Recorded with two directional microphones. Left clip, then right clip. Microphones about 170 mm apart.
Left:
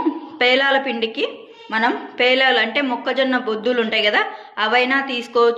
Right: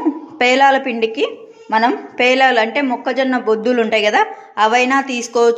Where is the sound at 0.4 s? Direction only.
55° right (ahead or behind).